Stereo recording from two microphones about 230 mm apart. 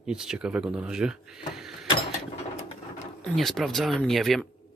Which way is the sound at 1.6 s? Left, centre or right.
Centre.